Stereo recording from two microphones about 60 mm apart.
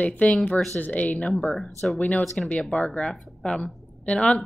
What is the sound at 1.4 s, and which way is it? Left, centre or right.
A woman's voice, centre.